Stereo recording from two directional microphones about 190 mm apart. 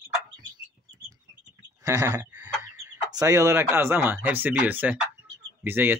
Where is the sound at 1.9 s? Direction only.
15° right (ahead or behind).